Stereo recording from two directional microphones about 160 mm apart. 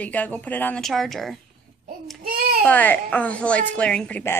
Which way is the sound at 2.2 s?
65° right (ahead or behind).